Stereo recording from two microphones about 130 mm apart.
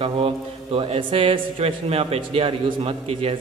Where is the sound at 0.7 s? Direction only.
45° right (ahead or behind).